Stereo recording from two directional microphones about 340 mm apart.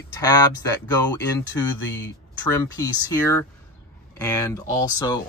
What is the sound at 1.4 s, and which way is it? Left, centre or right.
Speech, left.